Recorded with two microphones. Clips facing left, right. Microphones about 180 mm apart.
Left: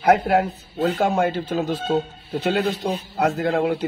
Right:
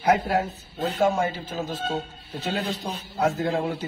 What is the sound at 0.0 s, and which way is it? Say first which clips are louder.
A man's voice: left 5 dB; 60° left (ahead or behind).